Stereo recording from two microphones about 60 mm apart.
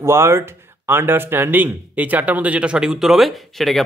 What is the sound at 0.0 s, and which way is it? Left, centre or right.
Speech, right.